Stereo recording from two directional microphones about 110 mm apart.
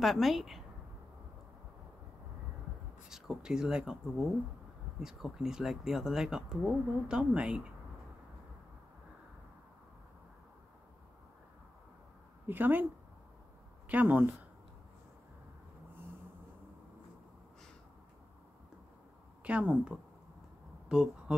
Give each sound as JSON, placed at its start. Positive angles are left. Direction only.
{"t": 0.0, "sound": "speech", "side_deg": 0}
{"t": 3.1, "sound": "speech", "side_deg": -5}
{"t": 12.4, "sound": "speech", "side_deg": -15}
{"t": 13.8, "sound": "speech", "side_deg": -15}
{"t": 19.4, "sound": "speech", "side_deg": -10}
{"t": 20.9, "sound": "speech", "side_deg": -5}